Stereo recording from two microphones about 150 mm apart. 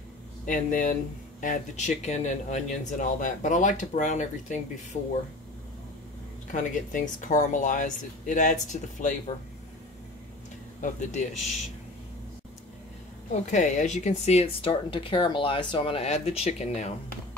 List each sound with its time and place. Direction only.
0.5 s speech: 60° left (ahead or behind)
6.5 s speech: 60° left (ahead or behind)
10.8 s speech: 55° left (ahead or behind)
13.3 s speech: 55° left (ahead or behind)